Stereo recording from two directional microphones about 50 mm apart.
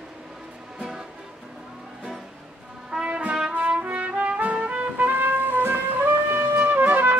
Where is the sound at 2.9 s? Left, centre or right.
Right.